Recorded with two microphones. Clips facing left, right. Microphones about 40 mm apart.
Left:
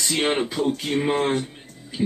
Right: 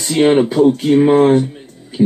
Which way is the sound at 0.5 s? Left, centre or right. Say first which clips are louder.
Right 12 dB; right.